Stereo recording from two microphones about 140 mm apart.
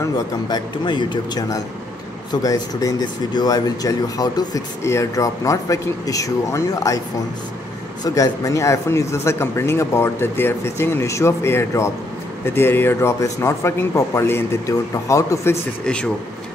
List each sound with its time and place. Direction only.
0.0 s speech: 30° left (ahead or behind)
8.0 s speech: 25° left (ahead or behind)
15.8 s a man's voice: 5° left (ahead or behind)